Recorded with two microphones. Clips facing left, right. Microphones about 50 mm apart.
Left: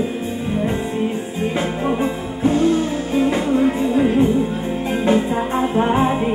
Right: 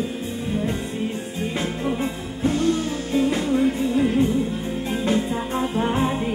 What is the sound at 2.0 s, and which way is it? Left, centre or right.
Music, centre.